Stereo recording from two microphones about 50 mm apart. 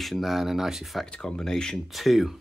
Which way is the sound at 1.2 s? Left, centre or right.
Centre.